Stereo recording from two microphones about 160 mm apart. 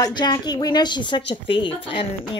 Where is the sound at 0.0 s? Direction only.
25° left (ahead or behind).